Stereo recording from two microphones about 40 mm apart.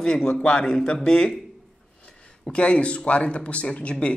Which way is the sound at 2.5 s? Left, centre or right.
Left.